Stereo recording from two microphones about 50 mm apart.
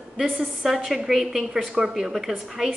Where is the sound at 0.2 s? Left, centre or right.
Centre.